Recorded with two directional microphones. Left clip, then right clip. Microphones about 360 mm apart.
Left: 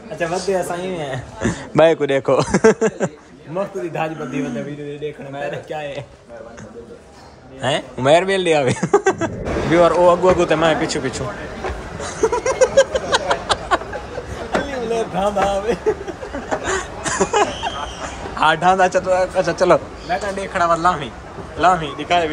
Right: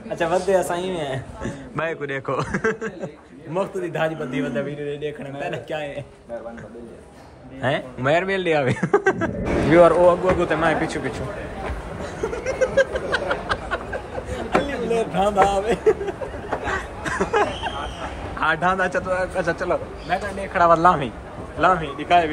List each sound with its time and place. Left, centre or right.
0.5 s speech: centre
1.4 s a sound: left
1.8 s speech: centre
7.6 s speech: centre
12.0 s a sound: centre
14.9 s speech: centre
16.6 s a sound: centre
18.4 s speech: centre
20.1 s speech: centre